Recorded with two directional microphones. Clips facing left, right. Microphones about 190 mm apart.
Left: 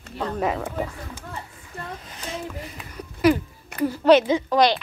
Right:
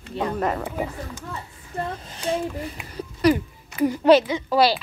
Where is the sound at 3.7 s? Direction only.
60° left (ahead or behind).